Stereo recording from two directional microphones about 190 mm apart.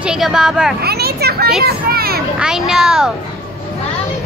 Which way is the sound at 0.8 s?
55° right (ahead or behind).